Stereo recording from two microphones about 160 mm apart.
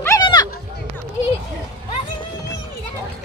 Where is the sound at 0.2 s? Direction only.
25° left (ahead or behind).